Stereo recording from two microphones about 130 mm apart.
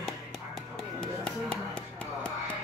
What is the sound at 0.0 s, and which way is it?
Music, 5° left (ahead or behind).